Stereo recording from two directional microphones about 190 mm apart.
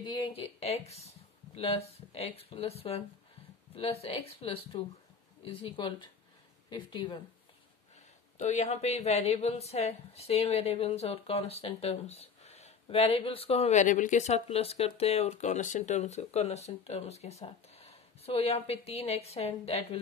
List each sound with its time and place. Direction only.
0.0 s a woman's voice: 25° left (ahead or behind)
8.4 s a woman's voice: 35° left (ahead or behind)